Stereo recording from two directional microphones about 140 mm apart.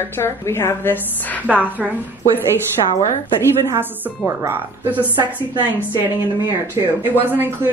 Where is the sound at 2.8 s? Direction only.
40° left (ahead or behind).